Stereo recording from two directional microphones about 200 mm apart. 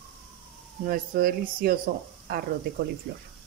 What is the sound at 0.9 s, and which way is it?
Speech, 50° right (ahead or behind).